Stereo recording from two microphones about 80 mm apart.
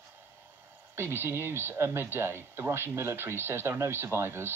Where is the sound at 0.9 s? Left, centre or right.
Right.